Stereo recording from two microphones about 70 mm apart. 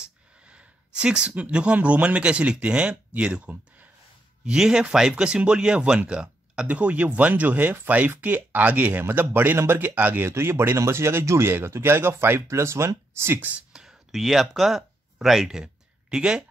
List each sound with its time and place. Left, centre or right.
0.0 s speech: centre
4.5 s speech: centre; by 13.4 s right
13.4 s speech: right
13.7 s a sound: centre